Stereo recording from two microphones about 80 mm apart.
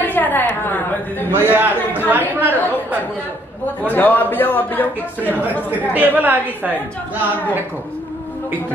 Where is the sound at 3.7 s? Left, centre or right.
Left.